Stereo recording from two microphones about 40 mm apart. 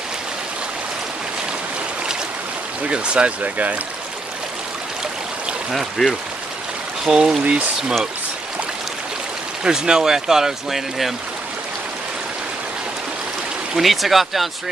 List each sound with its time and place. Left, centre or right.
2.9 s speech: right
5.7 s speech: centre
7.1 s speech: right
9.6 s speech: centre
13.7 s speech: centre